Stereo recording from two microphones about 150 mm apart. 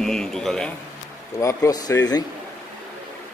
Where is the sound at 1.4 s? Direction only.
20° left (ahead or behind).